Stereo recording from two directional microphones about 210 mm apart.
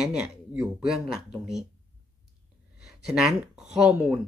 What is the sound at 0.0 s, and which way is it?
Speech, 5° right (ahead or behind).